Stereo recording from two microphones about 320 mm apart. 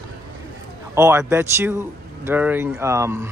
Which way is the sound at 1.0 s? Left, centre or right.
Centre.